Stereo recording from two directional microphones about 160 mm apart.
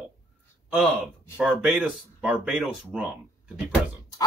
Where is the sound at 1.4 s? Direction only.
5° right (ahead or behind).